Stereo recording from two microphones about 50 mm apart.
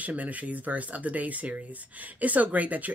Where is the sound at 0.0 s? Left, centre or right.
Right.